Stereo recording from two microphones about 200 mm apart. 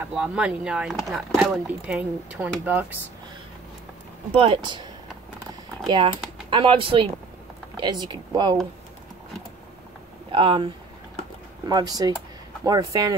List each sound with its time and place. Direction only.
0.0 s speech: 5° right (ahead or behind)
4.3 s speech: 25° right (ahead or behind)
6.5 s speech: 25° right (ahead or behind)
10.3 s speech: 25° right (ahead or behind)